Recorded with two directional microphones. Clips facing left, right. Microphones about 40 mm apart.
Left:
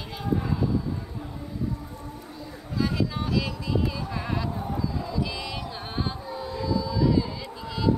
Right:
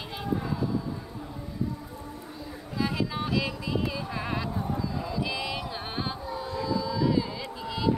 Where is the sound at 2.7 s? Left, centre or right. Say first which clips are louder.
Left 2 dB; centre.